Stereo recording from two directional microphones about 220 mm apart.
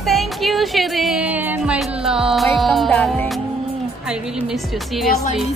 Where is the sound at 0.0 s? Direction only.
Centre (ahead or behind).